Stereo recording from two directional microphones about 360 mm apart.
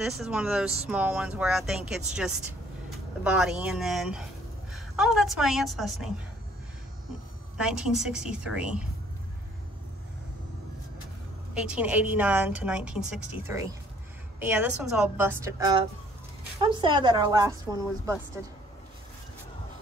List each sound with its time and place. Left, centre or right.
0.0 s a woman's voice: centre
7.5 s a woman's voice: centre
11.5 s a woman's voice: centre